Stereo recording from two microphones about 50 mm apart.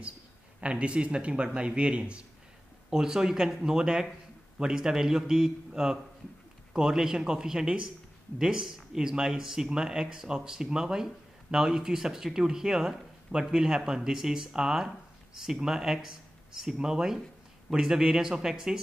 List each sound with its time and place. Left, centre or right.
0.6 s a man's voice: right